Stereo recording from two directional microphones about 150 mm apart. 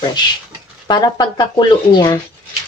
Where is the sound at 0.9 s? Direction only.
30° left (ahead or behind).